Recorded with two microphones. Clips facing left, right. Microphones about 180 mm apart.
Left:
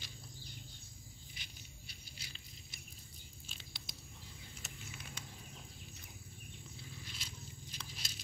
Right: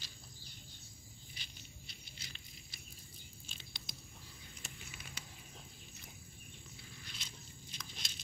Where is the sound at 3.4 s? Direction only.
Centre (ahead or behind).